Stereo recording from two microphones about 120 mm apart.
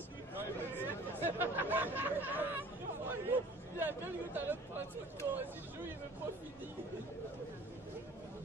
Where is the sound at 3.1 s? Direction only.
15° right (ahead or behind).